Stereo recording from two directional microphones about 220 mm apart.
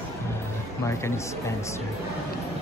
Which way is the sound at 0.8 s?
10° left (ahead or behind).